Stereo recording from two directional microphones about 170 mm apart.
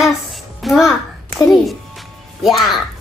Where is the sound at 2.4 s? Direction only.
Centre (ahead or behind).